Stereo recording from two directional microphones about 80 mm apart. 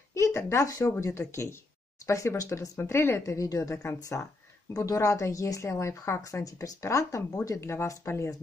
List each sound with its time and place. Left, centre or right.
0.1 s a woman's voice: left
2.8 s a woman's voice: left
3.3 s a woman's voice: left
6.4 s a woman's voice: left